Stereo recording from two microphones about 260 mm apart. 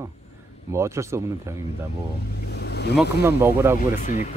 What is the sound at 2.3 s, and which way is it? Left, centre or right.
Vehicle, left.